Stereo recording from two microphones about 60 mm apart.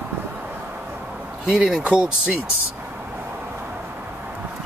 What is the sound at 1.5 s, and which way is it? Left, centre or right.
Speech, centre.